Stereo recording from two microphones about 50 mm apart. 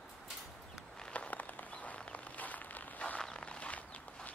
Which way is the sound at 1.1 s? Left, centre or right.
Left.